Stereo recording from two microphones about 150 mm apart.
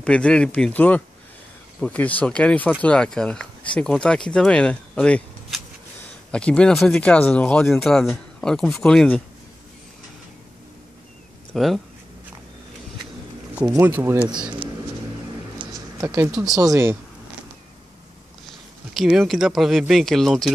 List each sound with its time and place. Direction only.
0.0 s speech: 5° left (ahead or behind)
11.5 s speech: centre (ahead or behind)
13.6 s speech: 10° right (ahead or behind)
15.6 s a sound: 25° right (ahead or behind)
16.3 s speech: 25° right (ahead or behind)
18.5 s speech: centre (ahead or behind)